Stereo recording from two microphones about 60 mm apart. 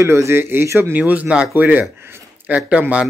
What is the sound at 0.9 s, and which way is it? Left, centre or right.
Speech, right.